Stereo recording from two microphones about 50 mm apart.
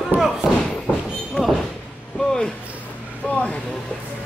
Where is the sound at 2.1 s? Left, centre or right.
Centre.